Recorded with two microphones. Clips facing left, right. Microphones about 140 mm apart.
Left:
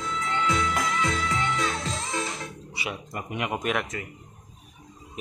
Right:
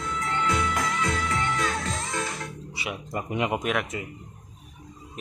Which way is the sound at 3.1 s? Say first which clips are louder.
Right 6 dB; 25° right (ahead or behind).